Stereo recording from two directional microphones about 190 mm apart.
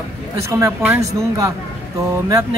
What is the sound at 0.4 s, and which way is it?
Speech, 15° right (ahead or behind).